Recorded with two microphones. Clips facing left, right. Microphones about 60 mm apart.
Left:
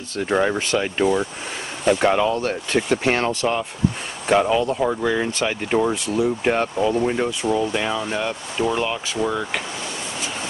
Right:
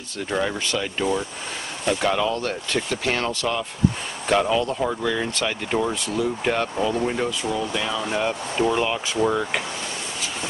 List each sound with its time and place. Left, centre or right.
0.3 s speech: left
0.7 s speech: left
2.0 s speech: left
4.3 s speech: centre
7.0 s speech: centre
7.4 s speech: left
8.0 s speech: centre